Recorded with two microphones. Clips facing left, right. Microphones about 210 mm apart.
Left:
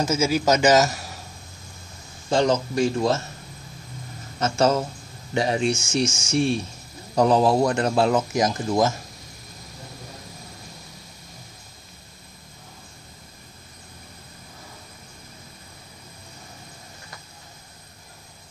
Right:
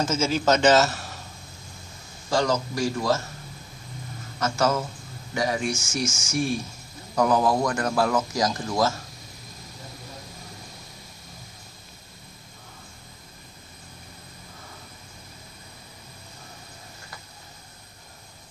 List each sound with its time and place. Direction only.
0.0 s a man's voice: 10° left (ahead or behind)
2.2 s speech: 20° left (ahead or behind)
4.4 s speech: 30° left (ahead or behind)